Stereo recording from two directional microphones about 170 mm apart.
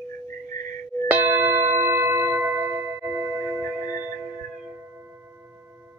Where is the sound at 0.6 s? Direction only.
55° right (ahead or behind).